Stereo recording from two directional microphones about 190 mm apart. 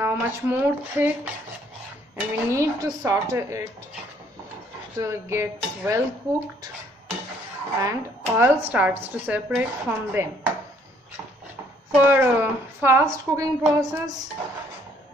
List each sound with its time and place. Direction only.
0.0 s speech: 10° right (ahead or behind)
4.9 s speech: 15° right (ahead or behind)
7.8 s speech: 15° right (ahead or behind)
11.9 s speech: 10° right (ahead or behind)
13.7 s music: 20° right (ahead or behind)